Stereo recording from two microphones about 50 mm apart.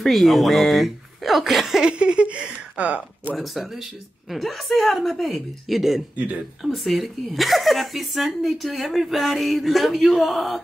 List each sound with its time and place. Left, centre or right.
0.0 s speech: centre; by 3.0 s right
3.3 s speech: centre
6.1 s speech: right
6.6 s speech: centre